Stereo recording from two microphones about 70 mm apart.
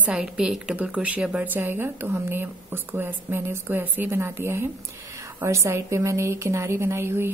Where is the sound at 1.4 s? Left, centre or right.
Right.